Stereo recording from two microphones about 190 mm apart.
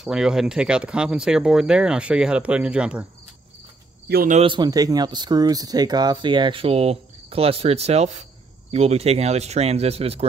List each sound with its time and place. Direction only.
0.0 s speech: 5° right (ahead or behind)
4.1 s speech: 50° right (ahead or behind)
4.4 s speech: 25° right (ahead or behind)